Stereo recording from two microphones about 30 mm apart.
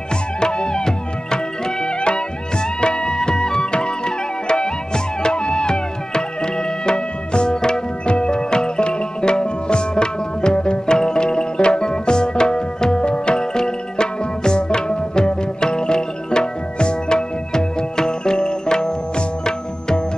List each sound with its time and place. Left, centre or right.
0.4 s music: left